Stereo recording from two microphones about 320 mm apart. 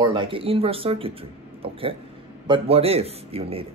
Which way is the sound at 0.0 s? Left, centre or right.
Centre.